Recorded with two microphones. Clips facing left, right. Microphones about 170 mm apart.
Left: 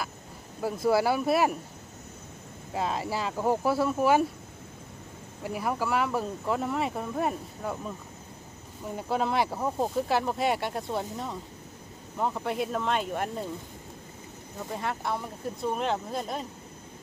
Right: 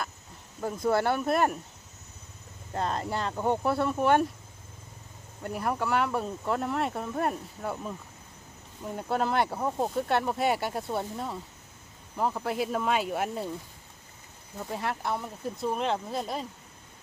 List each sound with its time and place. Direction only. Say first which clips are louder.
0.6 s speech: left 2 dB; 5° left (ahead or behind)
2.7 s speech: even; 5° left (ahead or behind)
5.4 s speech: even; centre (ahead or behind)
8.9 s speech: even; centre (ahead or behind)
14.7 s speech: even; centre (ahead or behind)